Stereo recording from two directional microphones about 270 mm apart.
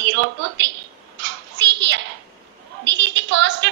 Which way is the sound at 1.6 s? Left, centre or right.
Right.